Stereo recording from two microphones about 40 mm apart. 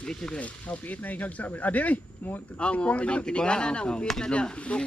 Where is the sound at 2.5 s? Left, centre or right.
Left.